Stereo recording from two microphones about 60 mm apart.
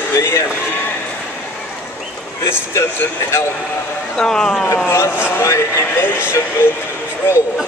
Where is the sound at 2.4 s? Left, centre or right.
Left.